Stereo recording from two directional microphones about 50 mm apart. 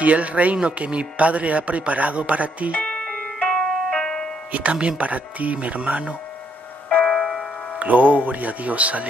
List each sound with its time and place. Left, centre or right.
0.0 s speech: right
2.7 s music: left
4.5 s speech: right
7.1 s music: centre
7.8 s speech: right